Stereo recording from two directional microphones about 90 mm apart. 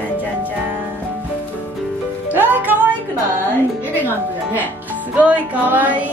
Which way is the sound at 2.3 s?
20° right (ahead or behind).